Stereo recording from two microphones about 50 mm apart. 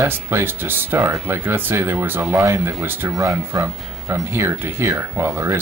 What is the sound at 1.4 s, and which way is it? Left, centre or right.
Speech, right.